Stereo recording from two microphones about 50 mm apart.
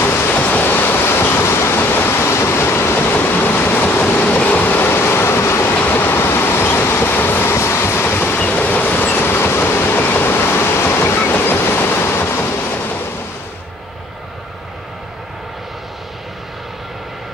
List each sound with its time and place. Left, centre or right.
0.0 s a sound: left
0.3 s a sound: left
1.8 s waterfall: left
2.3 s a sound: left
3.1 s vehicle: left
4.0 s train: left
5.9 s train: left
7.5 s train: left
8.0 s train: left
9.9 s waves: left
11.1 s train: left